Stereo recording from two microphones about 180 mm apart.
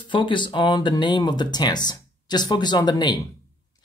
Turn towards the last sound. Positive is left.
turn(degrees=25)  # may be behind; listen again after turning